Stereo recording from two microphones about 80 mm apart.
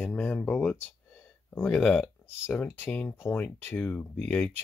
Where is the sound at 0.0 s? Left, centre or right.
Centre.